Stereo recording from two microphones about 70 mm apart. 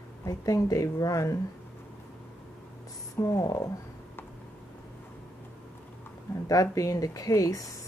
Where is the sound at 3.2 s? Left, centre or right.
Left.